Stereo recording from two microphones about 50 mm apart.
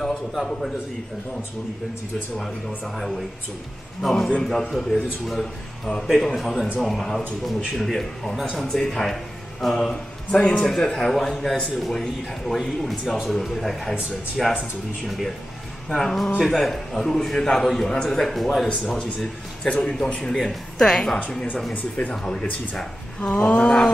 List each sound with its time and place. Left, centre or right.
0.0 s a man's voice: centre
3.0 s a man's voice: centre
4.4 s a man's voice: centre
15.9 s a man's voice: centre
19.8 s speech: centre